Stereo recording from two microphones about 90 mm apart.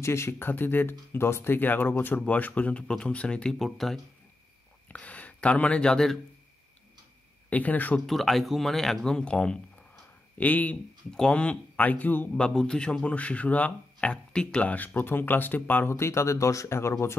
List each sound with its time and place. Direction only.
0.0 s speech: 30° left (ahead or behind); by 4.0 s centre (ahead or behind)
4.8 s speech: 15° left (ahead or behind)
7.4 s speech: 15° left (ahead or behind)
8.1 s speech: centre (ahead or behind); by 17.2 s 30° left (ahead or behind)